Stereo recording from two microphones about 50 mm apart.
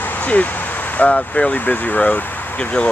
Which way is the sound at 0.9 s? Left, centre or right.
Left.